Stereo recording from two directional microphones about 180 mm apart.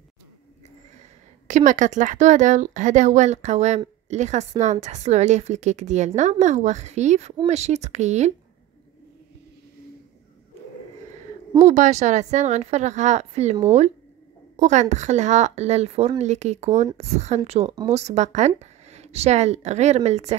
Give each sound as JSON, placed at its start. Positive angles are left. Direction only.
{"t": 1.5, "sound": "a woman's voice", "side_deg": -45}
{"t": 11.6, "sound": "a woman's voice", "side_deg": -40}
{"t": 14.6, "sound": "a woman's voice", "side_deg": -40}